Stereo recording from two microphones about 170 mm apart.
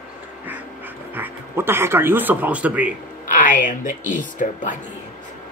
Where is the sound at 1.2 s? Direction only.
15° right (ahead or behind).